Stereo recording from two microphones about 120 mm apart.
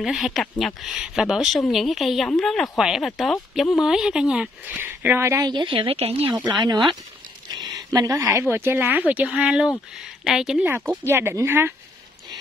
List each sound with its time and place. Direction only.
0.0 s speech: centre (ahead or behind); by 5.4 s 20° right (ahead or behind)
5.4 s speech: 40° right (ahead or behind); by 6.3 s 55° right (ahead or behind)
7.9 s a woman's voice: 30° right (ahead or behind); by 10.7 s 5° right (ahead or behind)
11.1 s speech: 20° right (ahead or behind)